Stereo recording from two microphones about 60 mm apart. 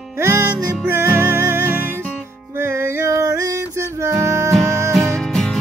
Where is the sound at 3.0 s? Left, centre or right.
Right.